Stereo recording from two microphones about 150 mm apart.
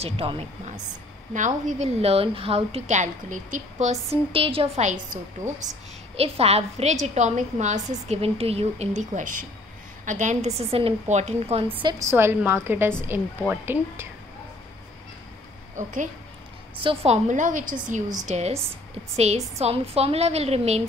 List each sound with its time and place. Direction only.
0.0 s a woman's voice: 40° right (ahead or behind)
1.3 s a woman's voice: 55° right (ahead or behind)
4.3 s a woman's voice: 40° right (ahead or behind)
4.8 s a woman's voice: 60° right (ahead or behind)
5.4 s speech: 25° right (ahead or behind)
6.1 s a woman's voice: 40° right (ahead or behind)
8.1 s a woman's voice: 40° right (ahead or behind)
11.8 s a woman's voice: 25° right (ahead or behind)
15.7 s a woman's voice: 55° right (ahead or behind)
16.8 s a woman's voice: 45° right (ahead or behind)
18.2 s a woman's voice: 45° right (ahead or behind)